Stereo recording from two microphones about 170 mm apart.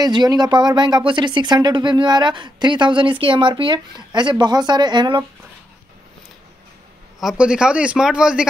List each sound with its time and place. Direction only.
0.0 s speech: 25° right (ahead or behind)
7.2 s speech: 5° right (ahead or behind)